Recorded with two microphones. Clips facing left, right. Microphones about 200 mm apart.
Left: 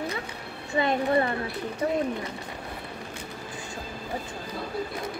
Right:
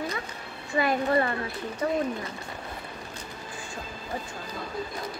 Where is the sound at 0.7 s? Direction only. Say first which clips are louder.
Left 1 dB; 25° left (ahead or behind).